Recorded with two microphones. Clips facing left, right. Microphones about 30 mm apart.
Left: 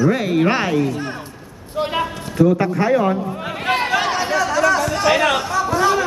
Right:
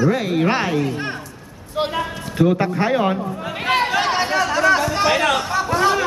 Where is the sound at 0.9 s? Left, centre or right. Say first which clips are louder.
Even; right.